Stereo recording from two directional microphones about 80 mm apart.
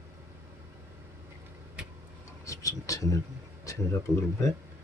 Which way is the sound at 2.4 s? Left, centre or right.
Left.